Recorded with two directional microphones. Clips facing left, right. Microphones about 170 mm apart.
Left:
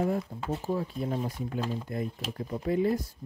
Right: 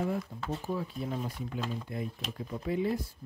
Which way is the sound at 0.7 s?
40° left (ahead or behind).